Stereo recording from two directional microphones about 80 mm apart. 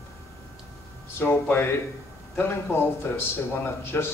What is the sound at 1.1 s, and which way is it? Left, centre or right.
A man's voice, left.